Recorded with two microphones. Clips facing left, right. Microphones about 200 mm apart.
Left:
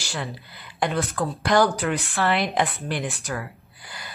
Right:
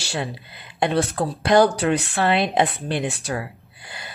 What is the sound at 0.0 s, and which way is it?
A woman's voice, 25° right (ahead or behind).